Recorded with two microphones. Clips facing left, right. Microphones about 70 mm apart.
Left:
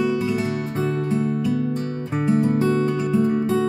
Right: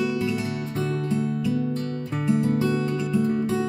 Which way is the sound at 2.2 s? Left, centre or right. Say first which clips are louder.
Left 3 dB; left.